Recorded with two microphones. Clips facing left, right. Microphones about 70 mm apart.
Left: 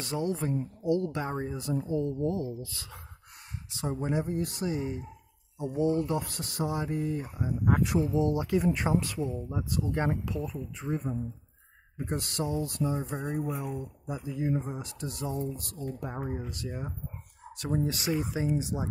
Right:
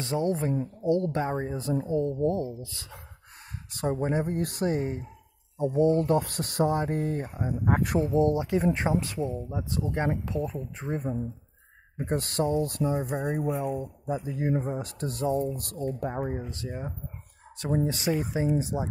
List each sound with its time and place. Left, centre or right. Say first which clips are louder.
0.0 s speech: right 4 dB; right
3.7 s speech: right 4 dB; right
4.3 s speech: right 4 dB; right
5.9 s speech: right 5 dB; right; by 9.7 s centre
9.7 s speech: right 1 dB; right
15.2 s speech: right 7 dB; right